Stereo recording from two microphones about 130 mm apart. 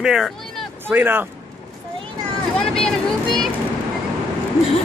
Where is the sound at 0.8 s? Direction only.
15° right (ahead or behind).